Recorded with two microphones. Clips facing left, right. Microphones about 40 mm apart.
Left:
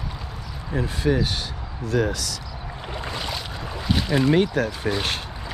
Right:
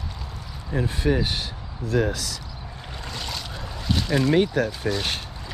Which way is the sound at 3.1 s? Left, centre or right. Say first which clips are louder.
Left 1 dB; centre.